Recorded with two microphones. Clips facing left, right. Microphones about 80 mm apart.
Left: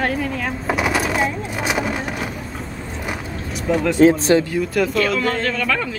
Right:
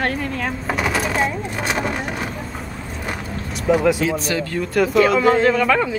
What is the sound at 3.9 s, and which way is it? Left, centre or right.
Speech, left.